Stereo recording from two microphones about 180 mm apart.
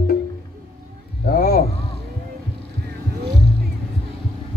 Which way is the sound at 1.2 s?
55° left (ahead or behind).